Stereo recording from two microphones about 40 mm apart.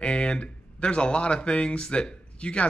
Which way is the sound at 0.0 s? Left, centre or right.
Left.